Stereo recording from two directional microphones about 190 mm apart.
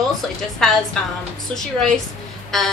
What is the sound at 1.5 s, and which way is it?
A woman's voice, 5° left (ahead or behind).